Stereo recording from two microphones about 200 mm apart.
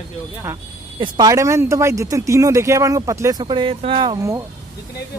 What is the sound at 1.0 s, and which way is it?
Speech, 20° right (ahead or behind).